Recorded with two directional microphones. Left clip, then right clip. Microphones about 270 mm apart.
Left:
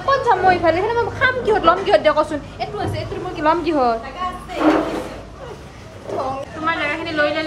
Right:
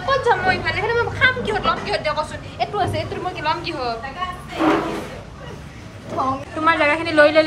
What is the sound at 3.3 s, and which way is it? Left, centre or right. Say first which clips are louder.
Speech: left 8 dB; left.